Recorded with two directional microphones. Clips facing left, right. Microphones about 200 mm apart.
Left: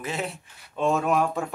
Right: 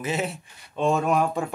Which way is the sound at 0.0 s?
5° right (ahead or behind).